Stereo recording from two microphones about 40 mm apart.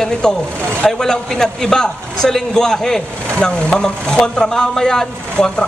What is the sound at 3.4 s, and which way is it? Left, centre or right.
Speech, left.